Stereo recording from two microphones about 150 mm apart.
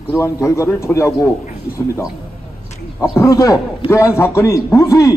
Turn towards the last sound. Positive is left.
turn(degrees=20)  # may be behind; listen again after turning